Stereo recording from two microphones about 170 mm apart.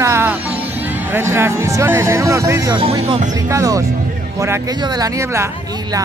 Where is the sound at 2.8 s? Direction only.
35° right (ahead or behind).